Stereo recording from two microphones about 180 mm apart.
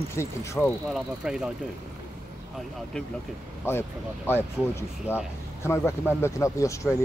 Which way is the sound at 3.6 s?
15° left (ahead or behind).